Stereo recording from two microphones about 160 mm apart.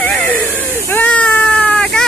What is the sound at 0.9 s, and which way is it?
Cat, 10° left (ahead or behind).